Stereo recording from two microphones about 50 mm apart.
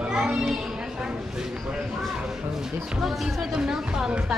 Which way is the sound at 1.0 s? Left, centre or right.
Centre.